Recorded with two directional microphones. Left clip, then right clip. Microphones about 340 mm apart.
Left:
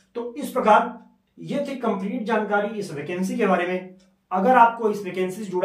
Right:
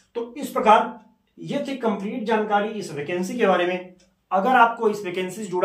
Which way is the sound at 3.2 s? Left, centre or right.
Centre.